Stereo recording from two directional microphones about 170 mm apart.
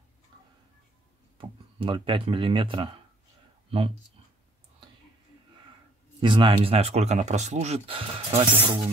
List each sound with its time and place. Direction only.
1.4 s speech: 30° right (ahead or behind)
6.2 s speech: 30° right (ahead or behind)